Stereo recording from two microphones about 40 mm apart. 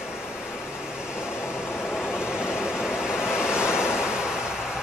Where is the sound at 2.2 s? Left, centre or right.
Centre.